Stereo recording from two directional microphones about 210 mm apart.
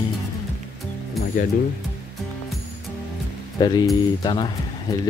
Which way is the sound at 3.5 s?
20° left (ahead or behind).